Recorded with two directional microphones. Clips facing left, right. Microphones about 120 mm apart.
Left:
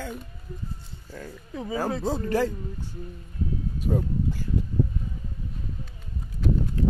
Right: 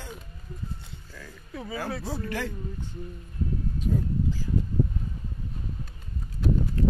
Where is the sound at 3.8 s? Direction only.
60° left (ahead or behind).